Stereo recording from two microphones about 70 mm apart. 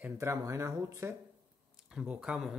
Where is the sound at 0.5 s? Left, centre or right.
Right.